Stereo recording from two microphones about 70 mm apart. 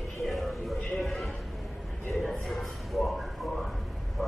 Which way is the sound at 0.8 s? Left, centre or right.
Centre.